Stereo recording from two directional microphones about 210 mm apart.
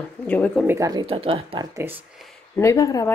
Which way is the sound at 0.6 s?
15° right (ahead or behind).